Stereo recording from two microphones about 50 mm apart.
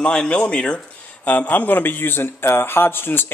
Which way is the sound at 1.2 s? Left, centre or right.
Left.